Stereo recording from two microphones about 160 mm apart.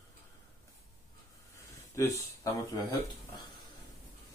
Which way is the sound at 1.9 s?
20° left (ahead or behind).